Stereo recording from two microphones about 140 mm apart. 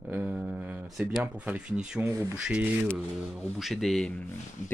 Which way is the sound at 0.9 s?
Centre (ahead or behind).